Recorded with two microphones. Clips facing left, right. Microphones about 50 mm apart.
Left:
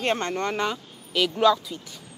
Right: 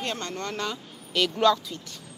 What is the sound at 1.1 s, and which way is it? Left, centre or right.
Speech, centre.